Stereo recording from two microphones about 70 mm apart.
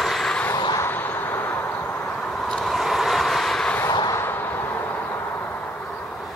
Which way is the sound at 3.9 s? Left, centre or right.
Left.